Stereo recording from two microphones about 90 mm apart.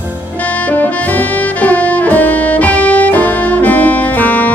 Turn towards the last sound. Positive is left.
turn(degrees=20)  # may be behind; listen again after turning